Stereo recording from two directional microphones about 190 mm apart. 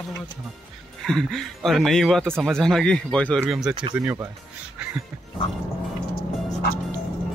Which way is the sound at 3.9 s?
15° right (ahead or behind).